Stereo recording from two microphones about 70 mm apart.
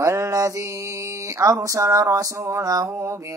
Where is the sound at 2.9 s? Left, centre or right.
Right.